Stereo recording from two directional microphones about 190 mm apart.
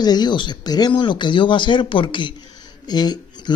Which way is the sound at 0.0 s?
20° left (ahead or behind).